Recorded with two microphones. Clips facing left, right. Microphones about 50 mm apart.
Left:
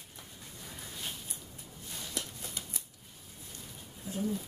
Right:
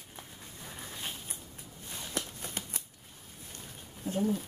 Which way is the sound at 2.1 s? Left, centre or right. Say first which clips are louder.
Right 4 dB; right.